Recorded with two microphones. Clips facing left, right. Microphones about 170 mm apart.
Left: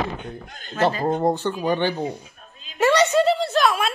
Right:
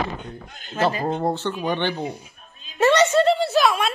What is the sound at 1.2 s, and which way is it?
Speech, 15° left (ahead or behind).